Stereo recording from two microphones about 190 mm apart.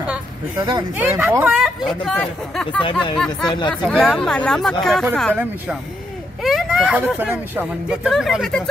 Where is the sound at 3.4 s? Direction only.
25° left (ahead or behind).